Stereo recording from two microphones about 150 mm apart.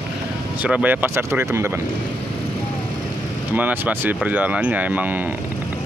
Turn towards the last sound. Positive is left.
turn(degrees=-10)  # may be behind; listen again after turning